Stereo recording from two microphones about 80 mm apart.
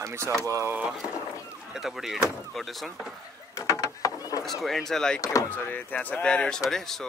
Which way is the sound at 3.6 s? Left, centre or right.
Left.